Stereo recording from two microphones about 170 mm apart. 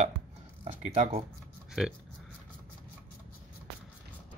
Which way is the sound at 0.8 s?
45° right (ahead or behind).